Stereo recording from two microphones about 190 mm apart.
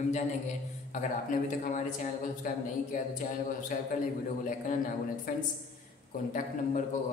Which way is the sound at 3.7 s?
45° left (ahead or behind).